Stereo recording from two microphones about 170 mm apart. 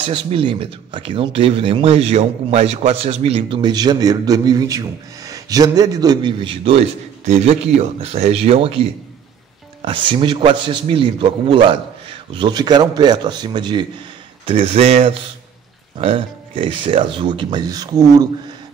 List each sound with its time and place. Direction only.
0.0 s a man's voice: 30° right (ahead or behind)